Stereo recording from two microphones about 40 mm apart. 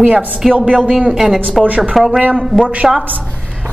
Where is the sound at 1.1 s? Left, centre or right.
Centre.